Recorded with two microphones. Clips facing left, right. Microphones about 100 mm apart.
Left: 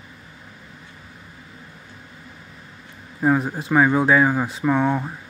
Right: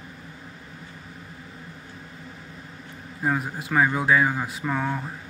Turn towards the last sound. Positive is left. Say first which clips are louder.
# left 7 dB
turn(degrees=25)  # may be behind; listen again after turning